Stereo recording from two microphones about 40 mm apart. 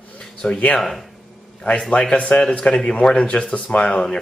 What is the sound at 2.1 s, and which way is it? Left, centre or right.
Speech, left.